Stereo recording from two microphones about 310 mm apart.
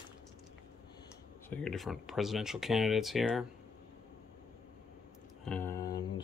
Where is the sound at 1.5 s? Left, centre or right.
Centre.